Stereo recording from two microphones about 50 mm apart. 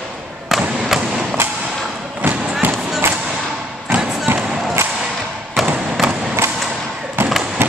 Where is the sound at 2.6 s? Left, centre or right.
Right.